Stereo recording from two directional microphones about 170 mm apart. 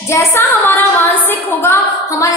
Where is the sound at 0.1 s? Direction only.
15° left (ahead or behind).